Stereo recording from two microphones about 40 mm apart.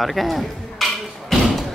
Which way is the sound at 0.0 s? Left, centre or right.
Centre.